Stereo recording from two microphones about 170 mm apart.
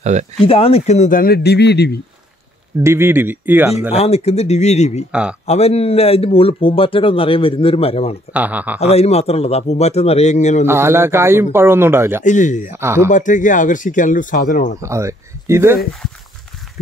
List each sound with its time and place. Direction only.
0.0 s speech: 45° right (ahead or behind)
0.4 s speech: 35° left (ahead or behind); by 2.0 s 80° left
2.8 s a man's voice: 15° right (ahead or behind)
3.9 s a man's voice: 40° left (ahead or behind)
8.3 s a man's voice: 10° right (ahead or behind)
8.7 s a man's voice: 40° left (ahead or behind)
10.7 s a man's voice: 15° right (ahead or behind)
12.3 s speech: 45° left (ahead or behind)
12.7 s a man's voice: 15° right (ahead or behind)
13.1 s speech: 50° left (ahead or behind)
14.8 s a man's voice: 15° right (ahead or behind)